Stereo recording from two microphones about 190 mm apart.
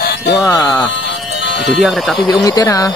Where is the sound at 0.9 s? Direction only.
65° left (ahead or behind).